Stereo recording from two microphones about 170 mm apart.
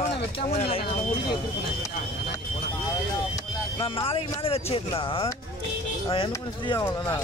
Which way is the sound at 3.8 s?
30° left (ahead or behind).